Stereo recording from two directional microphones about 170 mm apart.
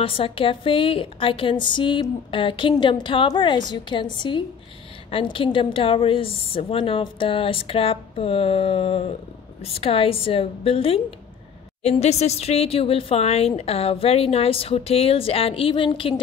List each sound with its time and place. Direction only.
0.0 s a woman's voice: 30° left (ahead or behind)